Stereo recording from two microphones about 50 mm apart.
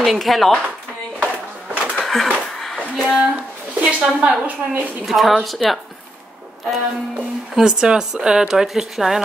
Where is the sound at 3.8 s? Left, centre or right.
Right.